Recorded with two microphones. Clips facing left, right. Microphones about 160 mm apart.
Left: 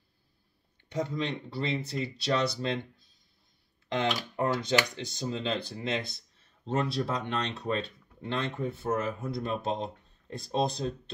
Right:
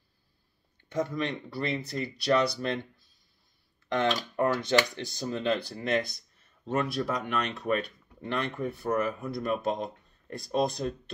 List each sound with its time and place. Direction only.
0.8 s speech: 20° left (ahead or behind)
3.9 s speech: 15° left (ahead or behind)